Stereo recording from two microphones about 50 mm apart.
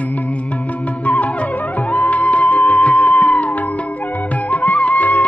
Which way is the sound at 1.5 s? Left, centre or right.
Left.